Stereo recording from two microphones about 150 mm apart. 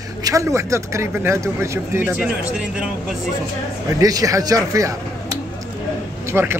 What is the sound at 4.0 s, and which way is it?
A man's voice, 25° right (ahead or behind).